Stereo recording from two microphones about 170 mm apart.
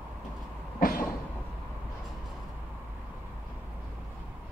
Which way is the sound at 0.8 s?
55° left (ahead or behind).